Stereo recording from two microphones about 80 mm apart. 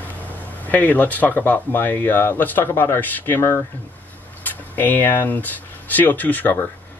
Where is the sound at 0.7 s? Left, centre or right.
Left.